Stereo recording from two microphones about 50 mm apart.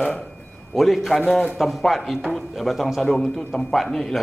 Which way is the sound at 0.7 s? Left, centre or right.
Centre.